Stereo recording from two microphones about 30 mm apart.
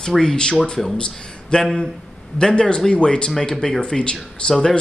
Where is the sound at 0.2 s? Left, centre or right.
Left.